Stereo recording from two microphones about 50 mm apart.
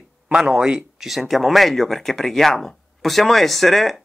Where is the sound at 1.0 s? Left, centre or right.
Centre.